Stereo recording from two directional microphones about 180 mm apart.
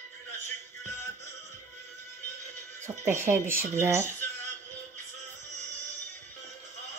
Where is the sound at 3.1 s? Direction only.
15° right (ahead or behind).